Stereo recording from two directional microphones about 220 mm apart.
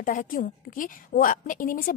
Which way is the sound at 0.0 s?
40° left (ahead or behind).